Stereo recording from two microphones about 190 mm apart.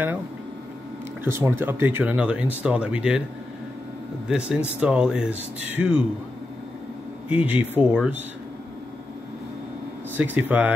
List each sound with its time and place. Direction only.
1.2 s speech: 10° right (ahead or behind)
4.3 s speech: 5° right (ahead or behind)
7.2 s speech: 5° right (ahead or behind)
10.1 s speech: 10° right (ahead or behind)